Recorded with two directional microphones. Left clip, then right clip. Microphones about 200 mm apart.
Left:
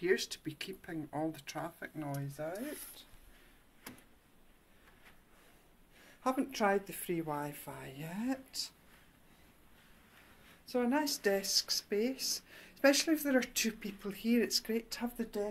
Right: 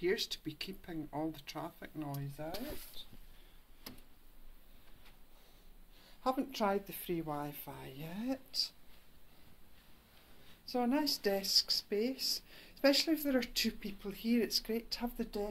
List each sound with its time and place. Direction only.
0.0 s speech: centre (ahead or behind)
3.0 s a sound: 15° left (ahead or behind)
6.2 s speech: 10° left (ahead or behind)
10.7 s speech: centre (ahead or behind)